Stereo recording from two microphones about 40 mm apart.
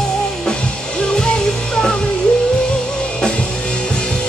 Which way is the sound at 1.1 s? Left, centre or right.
Centre.